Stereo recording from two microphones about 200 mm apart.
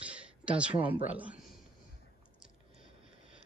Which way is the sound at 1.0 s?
10° right (ahead or behind).